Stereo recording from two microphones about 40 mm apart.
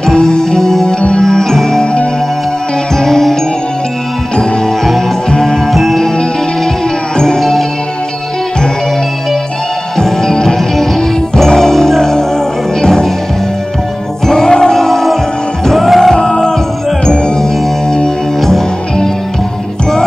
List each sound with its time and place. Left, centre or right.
0.0 s music: centre
3.0 s music: centre
5.3 s music: centre
5.7 s music: centre
7.2 s music: centre
9.9 s music: centre
14.2 s music: centre
16.2 s music: centre